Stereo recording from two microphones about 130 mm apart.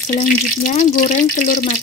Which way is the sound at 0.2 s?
70° left (ahead or behind).